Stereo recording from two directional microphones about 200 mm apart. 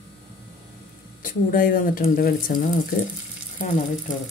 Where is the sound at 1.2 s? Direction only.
45° left (ahead or behind).